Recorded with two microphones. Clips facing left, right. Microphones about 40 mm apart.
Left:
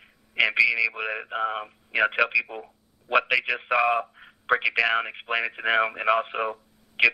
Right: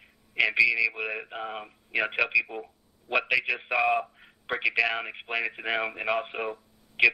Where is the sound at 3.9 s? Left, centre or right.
Left.